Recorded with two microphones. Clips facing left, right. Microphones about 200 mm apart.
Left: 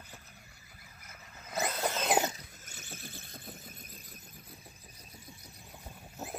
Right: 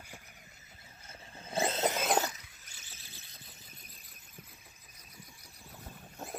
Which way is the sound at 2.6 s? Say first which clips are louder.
Left 11 dB; 50° left (ahead or behind).